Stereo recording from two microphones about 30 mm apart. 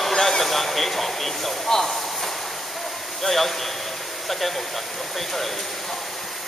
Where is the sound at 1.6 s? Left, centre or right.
Centre.